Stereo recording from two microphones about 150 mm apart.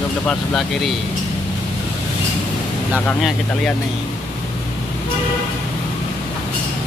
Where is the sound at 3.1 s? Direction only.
5° left (ahead or behind).